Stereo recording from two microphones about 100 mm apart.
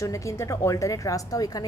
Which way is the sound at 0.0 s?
30° left (ahead or behind).